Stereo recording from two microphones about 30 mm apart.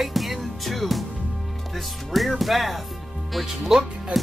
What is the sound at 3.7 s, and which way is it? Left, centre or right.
Speech, centre.